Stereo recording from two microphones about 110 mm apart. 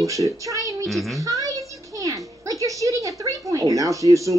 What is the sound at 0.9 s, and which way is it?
Speech, centre (ahead or behind).